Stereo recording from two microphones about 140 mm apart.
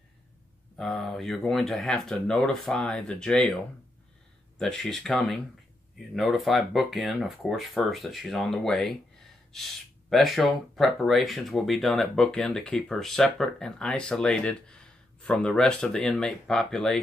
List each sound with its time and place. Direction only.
0.7 s speech: centre (ahead or behind)
4.6 s speech: 5° left (ahead or behind)